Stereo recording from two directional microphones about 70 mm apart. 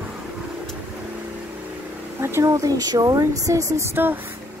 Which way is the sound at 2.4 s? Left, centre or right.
Right.